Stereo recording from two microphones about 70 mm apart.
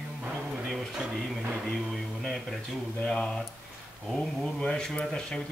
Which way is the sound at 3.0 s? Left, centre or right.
Centre.